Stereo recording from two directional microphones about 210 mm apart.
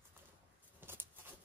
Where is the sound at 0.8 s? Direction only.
10° right (ahead or behind).